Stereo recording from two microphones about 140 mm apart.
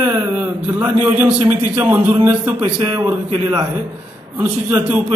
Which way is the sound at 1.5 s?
15° right (ahead or behind).